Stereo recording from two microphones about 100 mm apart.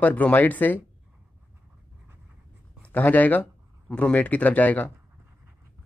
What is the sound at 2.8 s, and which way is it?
Speech, 15° left (ahead or behind).